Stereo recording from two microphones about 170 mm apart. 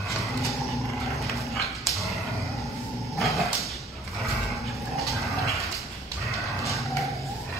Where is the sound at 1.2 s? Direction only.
Centre (ahead or behind).